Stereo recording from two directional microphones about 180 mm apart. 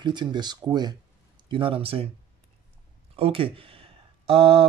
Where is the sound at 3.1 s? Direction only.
30° right (ahead or behind).